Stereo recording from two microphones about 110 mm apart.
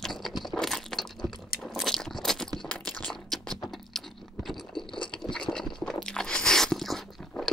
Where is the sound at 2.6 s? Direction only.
5° left (ahead or behind).